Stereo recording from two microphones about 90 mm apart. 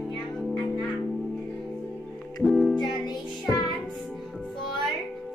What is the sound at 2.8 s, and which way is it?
Music, 55° left (ahead or behind).